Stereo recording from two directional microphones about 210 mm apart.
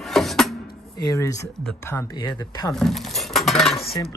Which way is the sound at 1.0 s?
15° left (ahead or behind).